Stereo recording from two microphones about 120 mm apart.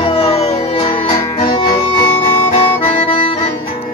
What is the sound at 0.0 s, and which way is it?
Music, 55° left (ahead or behind).